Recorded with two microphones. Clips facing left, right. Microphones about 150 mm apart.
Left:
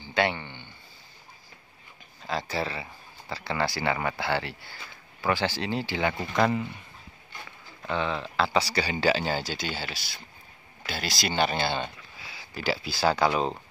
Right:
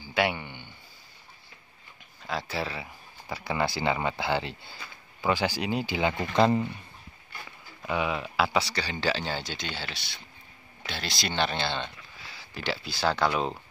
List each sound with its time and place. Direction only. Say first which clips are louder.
0.0 s a sound: left 1 dB; 5° right (ahead or behind)
2.2 s speech: left 2 dB; centre (ahead or behind)
3.3 s speech: even; 15° right (ahead or behind)
6.3 s speech: right 3 dB; 30° right (ahead or behind)
7.8 s speech: even; 10° right (ahead or behind)